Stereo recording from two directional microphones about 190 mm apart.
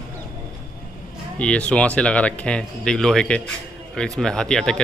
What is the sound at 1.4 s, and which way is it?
Speech, 5° left (ahead or behind).